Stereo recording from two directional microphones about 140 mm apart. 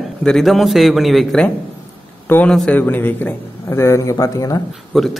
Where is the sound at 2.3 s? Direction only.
15° left (ahead or behind).